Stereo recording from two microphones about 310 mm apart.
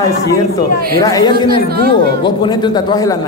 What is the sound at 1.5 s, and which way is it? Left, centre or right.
Speech, right.